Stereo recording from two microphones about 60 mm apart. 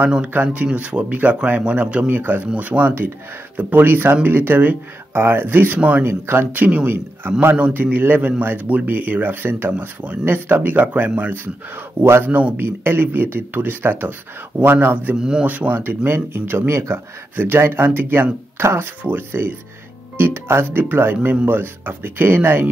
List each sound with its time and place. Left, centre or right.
0.3 s a man's voice: right
2.0 s a man's voice: right
6.0 s speech: right
7.5 s a man's voice: right
15.1 s speech: centre
15.4 s speech: right
17.4 s speech: right
18.6 s speech: right
19.0 s speech: right